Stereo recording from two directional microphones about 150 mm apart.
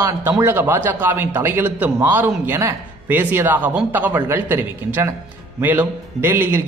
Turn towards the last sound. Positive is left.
turn(degrees=-15)  # may be behind; listen again after turning